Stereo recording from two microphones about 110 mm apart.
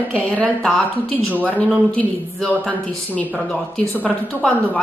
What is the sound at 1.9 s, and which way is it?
Speech, 10° left (ahead or behind).